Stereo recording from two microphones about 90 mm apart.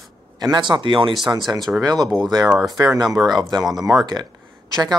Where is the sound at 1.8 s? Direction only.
45° right (ahead or behind).